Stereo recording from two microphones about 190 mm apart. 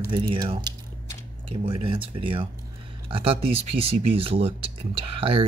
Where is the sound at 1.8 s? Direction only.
25° right (ahead or behind).